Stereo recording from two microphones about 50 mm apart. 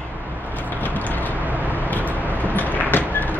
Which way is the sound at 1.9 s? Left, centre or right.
Left.